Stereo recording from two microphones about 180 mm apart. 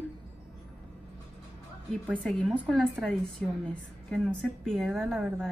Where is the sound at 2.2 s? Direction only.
5° left (ahead or behind).